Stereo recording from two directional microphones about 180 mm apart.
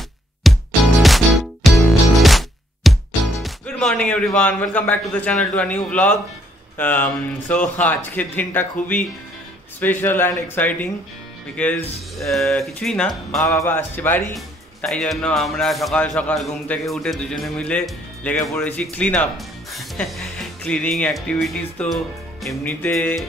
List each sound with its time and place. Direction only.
0.4 s music: centre (ahead or behind)
6.8 s speech: 10° left (ahead or behind)
7.4 s speech: 45° left (ahead or behind)
7.9 s a man's voice: 10° left (ahead or behind)